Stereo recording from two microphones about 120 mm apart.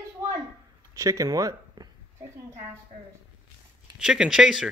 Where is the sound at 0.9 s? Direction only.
25° right (ahead or behind).